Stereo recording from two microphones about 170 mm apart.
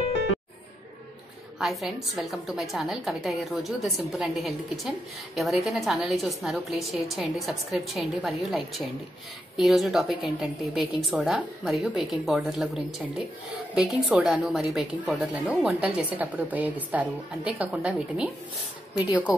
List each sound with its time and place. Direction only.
1.6 s a woman's voice: centre (ahead or behind)